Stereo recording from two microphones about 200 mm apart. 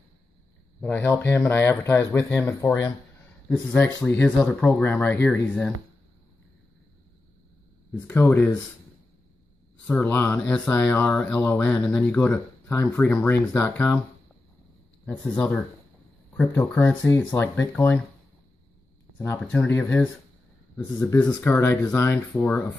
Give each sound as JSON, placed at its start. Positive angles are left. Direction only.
{"t": 0.7, "sound": "speech", "side_deg": 10}
{"t": 8.1, "sound": "speech", "side_deg": 10}
{"t": 9.8, "sound": "speech", "side_deg": 10}
{"t": 15.0, "sound": "speech", "side_deg": 5}
{"t": 19.1, "sound": "speech", "side_deg": 10}